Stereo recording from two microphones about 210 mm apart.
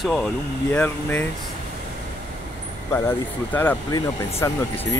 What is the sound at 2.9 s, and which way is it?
Speech, 10° left (ahead or behind).